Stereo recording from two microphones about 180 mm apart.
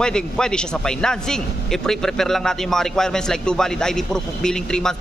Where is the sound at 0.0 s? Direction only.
5° left (ahead or behind).